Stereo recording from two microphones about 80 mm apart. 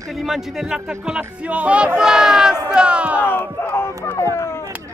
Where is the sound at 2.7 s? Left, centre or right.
Centre.